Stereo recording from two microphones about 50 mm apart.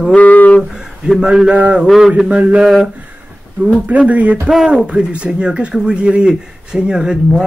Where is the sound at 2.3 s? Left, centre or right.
Right.